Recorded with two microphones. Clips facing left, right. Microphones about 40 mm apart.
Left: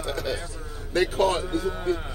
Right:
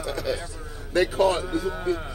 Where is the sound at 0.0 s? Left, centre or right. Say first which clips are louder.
Right 1 dB; left.